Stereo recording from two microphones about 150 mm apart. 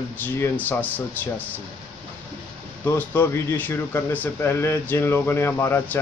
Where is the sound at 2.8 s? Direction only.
15° left (ahead or behind).